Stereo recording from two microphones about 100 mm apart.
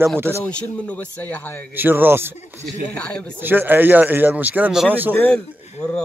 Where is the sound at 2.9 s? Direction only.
10° left (ahead or behind).